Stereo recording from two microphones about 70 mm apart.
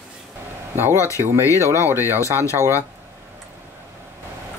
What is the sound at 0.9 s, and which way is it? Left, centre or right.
Speech, left.